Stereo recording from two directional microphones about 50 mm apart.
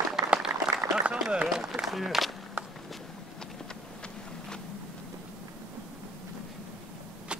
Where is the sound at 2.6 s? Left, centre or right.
Right.